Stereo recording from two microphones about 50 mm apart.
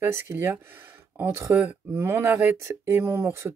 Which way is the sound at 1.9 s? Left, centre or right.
Right.